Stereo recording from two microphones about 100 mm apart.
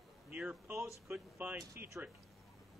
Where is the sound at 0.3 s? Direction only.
15° right (ahead or behind).